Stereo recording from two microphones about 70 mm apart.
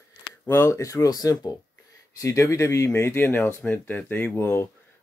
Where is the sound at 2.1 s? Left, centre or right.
Left.